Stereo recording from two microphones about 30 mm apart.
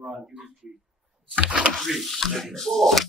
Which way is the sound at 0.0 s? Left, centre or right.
Centre.